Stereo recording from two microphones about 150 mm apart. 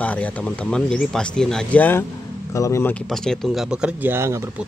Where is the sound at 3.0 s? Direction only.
5° left (ahead or behind); by 4.4 s 15° right (ahead or behind).